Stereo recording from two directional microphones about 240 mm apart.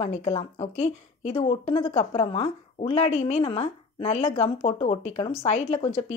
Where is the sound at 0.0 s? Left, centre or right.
Left.